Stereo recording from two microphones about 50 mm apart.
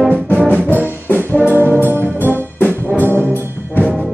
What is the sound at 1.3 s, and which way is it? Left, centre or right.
Brass instrument, left.